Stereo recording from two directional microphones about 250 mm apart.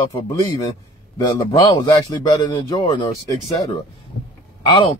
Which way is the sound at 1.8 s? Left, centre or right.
Centre.